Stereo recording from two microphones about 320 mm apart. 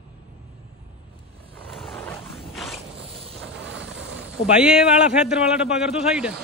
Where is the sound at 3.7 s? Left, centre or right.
Right.